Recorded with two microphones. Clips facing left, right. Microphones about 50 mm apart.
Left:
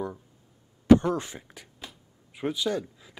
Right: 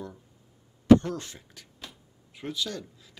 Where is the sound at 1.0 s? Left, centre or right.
Centre.